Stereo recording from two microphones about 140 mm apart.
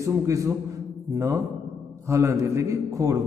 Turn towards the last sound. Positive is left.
turn(degrees=-25)  # may be behind; listen again after turning